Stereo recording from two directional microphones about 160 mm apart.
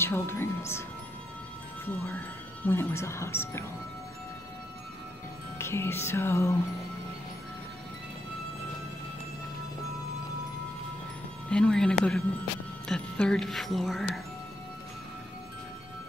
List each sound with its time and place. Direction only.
0.0 s speech: 15° left (ahead or behind)
1.9 s speech: 10° left (ahead or behind)
5.6 s speech: 15° left (ahead or behind)
11.5 s speech: 5° left (ahead or behind)